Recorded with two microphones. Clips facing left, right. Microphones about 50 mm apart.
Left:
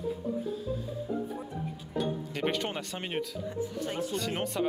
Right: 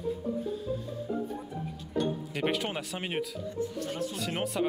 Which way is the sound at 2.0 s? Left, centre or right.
Centre.